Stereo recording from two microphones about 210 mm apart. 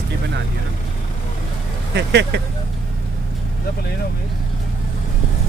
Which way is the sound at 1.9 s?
55° right (ahead or behind).